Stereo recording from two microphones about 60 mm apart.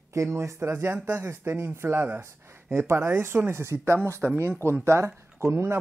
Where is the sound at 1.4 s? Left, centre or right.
Right.